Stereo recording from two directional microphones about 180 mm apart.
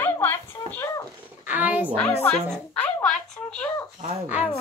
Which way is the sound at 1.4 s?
10° right (ahead or behind).